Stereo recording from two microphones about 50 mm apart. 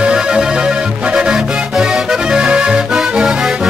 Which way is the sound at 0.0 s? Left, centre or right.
Centre.